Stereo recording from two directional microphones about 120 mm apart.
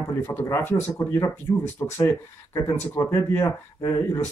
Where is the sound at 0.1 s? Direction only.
20° left (ahead or behind).